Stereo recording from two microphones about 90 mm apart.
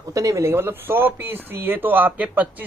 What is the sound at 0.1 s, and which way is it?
Speech, 35° right (ahead or behind).